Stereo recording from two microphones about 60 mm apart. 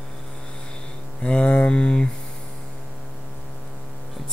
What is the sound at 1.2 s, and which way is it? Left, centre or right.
Mantra, centre.